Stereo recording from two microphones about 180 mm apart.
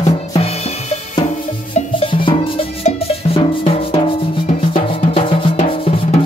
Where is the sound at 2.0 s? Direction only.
30° left (ahead or behind).